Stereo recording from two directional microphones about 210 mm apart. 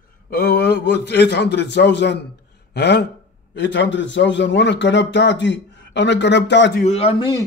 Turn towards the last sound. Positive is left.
turn(degrees=30)  # may be behind; listen again after turning